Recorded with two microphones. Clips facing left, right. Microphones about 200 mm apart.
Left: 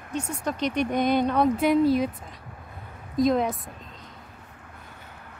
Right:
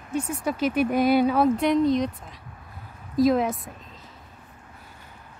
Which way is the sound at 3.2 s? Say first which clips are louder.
Right 2 dB; centre (ahead or behind).